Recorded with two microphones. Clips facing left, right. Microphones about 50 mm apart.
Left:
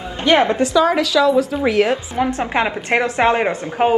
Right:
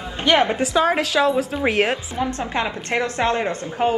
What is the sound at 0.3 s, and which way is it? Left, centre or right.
Speech, left.